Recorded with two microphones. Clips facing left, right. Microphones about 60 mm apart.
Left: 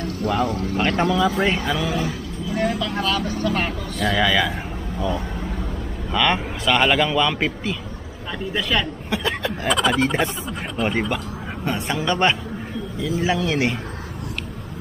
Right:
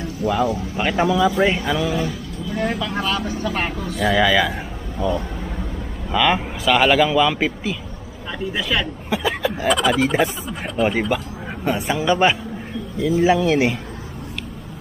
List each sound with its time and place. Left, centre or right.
0.0 s speech: centre